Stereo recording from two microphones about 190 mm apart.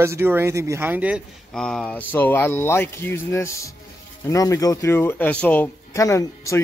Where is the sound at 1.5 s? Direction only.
5° left (ahead or behind).